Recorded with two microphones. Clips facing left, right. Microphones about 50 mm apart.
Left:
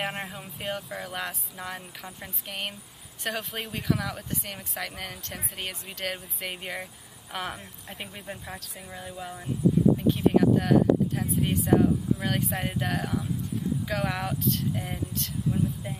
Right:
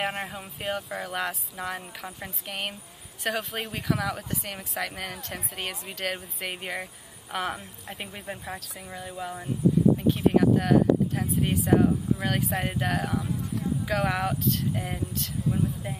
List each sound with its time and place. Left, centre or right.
0.0 s speech: centre